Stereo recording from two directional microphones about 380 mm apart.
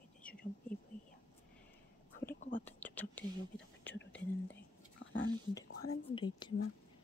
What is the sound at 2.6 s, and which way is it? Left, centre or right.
Whispering, centre.